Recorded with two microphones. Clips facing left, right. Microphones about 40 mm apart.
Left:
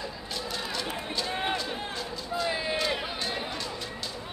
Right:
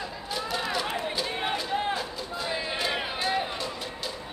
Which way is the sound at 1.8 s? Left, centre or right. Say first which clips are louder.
Right 6 dB; right.